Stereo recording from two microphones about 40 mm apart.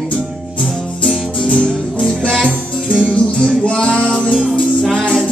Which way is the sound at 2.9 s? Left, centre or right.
Right.